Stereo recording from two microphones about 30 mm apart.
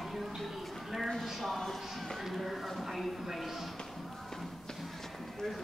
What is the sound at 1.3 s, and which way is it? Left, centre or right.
Clip-clop, centre.